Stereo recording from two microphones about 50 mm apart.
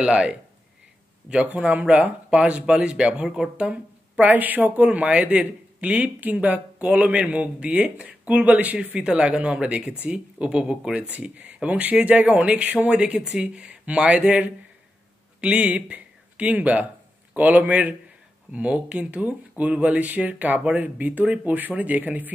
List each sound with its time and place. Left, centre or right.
0.0 s speech: centre
1.3 s speech: right
8.7 s speech: centre